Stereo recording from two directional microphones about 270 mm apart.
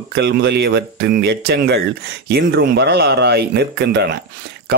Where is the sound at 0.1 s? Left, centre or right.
Right.